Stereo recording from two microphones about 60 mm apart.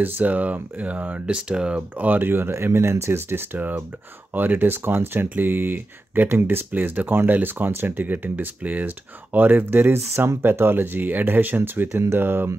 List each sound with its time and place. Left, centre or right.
0.0 s speech: right
1.2 s speech: centre
2.0 s speech: right